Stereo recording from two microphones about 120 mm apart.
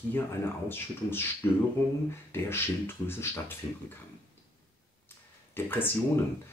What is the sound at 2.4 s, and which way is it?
Speech, 20° left (ahead or behind).